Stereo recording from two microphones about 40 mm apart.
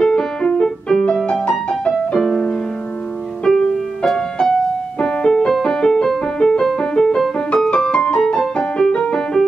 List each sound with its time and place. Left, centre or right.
0.0 s music: centre
1.9 s music: centre
3.4 s music: centre
5.0 s music: centre